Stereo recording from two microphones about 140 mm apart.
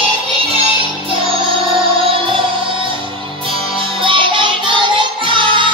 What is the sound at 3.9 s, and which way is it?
Music, 35° right (ahead or behind).